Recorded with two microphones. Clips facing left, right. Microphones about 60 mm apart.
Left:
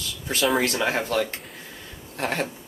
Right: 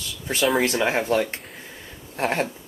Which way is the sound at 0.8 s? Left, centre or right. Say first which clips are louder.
Right 2 dB; right.